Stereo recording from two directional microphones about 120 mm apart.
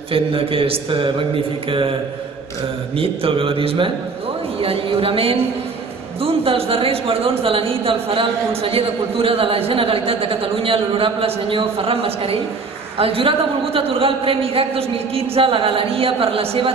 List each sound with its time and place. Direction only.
0.1 s speech: 50° right (ahead or behind)
3.0 s speech: 50° right (ahead or behind)